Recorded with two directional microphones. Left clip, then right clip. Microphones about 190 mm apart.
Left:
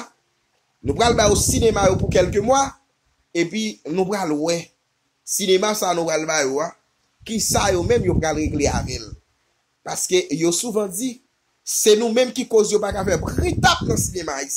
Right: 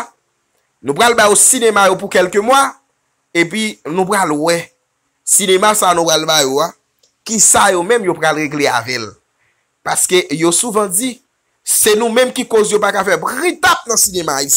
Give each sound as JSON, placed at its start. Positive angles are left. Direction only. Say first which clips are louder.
{"t": 0.8, "sound": "speech", "louder": "right 7 dB", "side_deg": 0}
{"t": 5.4, "sound": "speech", "louder": "right 7 dB", "side_deg": 0}
{"t": 6.0, "sound": "speech", "louder": "right 8 dB", "side_deg": -20}
{"t": 7.2, "sound": "speech", "louder": "right 9 dB", "side_deg": -5}
{"t": 13.9, "sound": "speech", "louder": "right 10 dB", "side_deg": -20}